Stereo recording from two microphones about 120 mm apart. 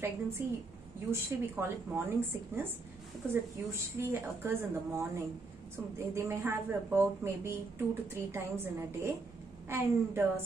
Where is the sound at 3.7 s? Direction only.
20° right (ahead or behind).